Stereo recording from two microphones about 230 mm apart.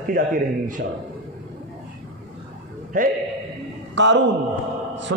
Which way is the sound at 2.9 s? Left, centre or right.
Right.